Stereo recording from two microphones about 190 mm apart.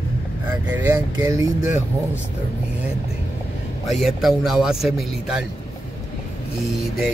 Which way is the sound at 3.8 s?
Centre (ahead or behind).